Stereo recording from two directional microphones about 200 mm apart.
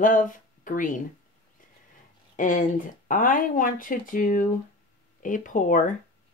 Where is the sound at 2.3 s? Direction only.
40° left (ahead or behind).